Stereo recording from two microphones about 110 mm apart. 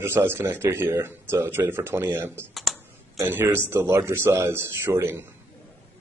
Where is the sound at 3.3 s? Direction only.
20° right (ahead or behind).